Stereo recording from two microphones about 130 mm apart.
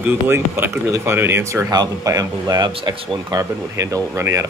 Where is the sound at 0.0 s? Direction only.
15° right (ahead or behind); by 3.3 s 40° right (ahead or behind).